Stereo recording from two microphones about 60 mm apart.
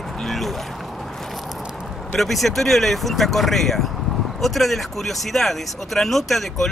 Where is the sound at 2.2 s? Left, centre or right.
Centre.